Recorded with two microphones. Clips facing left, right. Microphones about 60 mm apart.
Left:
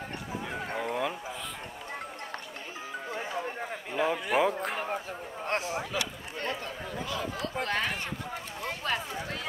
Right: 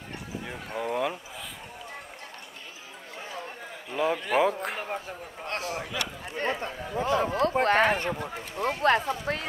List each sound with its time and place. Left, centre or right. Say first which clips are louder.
0.8 s a sound: right 4 dB; centre
3.9 s a man's voice: right 2 dB; centre
5.5 s speech: left 1 dB; left
6.3 s speech: right 5 dB; right
7.0 s speech: right 11 dB; right